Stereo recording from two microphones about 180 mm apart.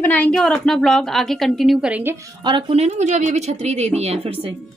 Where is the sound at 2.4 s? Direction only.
25° right (ahead or behind).